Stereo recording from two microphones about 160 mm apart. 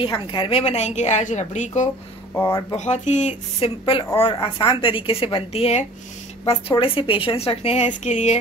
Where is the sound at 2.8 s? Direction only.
50° left (ahead or behind).